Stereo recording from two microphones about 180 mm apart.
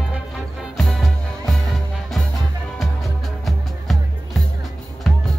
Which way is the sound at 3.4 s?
Centre (ahead or behind).